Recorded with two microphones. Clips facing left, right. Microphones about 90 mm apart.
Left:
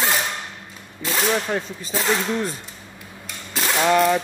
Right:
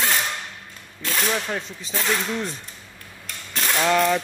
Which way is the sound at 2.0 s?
20° left (ahead or behind).